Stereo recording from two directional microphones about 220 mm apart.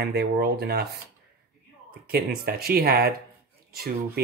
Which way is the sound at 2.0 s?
45° right (ahead or behind).